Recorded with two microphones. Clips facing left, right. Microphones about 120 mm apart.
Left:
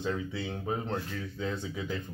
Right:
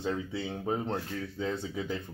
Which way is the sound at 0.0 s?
30° right (ahead or behind).